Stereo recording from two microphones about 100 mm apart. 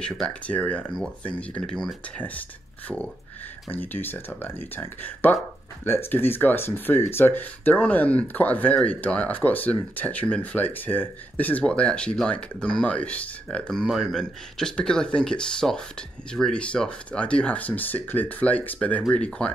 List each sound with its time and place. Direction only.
0.0 s speech: 10° left (ahead or behind)
3.7 s speech: 20° left (ahead or behind)